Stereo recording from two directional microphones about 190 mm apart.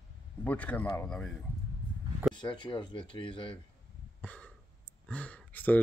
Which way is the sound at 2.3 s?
25° left (ahead or behind).